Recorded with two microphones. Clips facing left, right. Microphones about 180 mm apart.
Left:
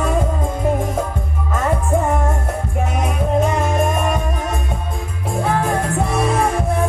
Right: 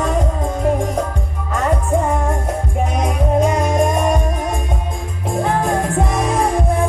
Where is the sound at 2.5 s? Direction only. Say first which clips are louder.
Right 2 dB; 15° right (ahead or behind).